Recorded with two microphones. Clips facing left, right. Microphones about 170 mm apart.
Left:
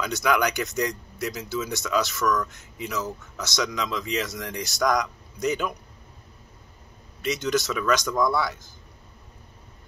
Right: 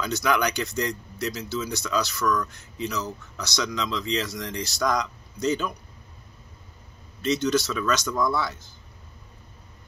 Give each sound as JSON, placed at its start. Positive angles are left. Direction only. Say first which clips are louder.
{"t": 0.0, "sound": "speech", "louder": "left 1 dB", "side_deg": 15}
{"t": 7.2, "sound": "speech", "louder": "right 2 dB", "side_deg": 15}